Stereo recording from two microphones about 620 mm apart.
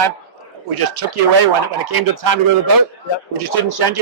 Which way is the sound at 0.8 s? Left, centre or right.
Right.